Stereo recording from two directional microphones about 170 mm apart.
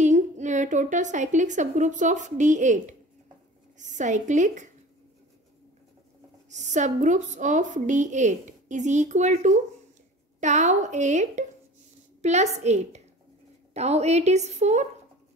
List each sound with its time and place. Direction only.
0.0 s a woman's voice: 45° right (ahead or behind)
6.5 s a woman's voice: 45° right (ahead or behind)